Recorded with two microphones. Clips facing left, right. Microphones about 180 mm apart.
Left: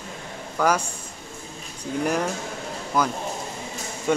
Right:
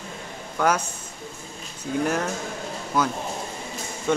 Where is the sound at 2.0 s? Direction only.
10° left (ahead or behind).